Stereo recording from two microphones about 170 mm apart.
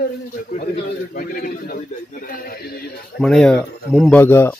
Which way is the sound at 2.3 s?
60° left (ahead or behind).